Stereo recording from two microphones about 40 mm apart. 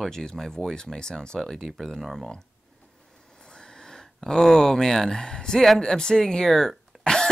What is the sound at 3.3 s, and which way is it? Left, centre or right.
Speech, centre.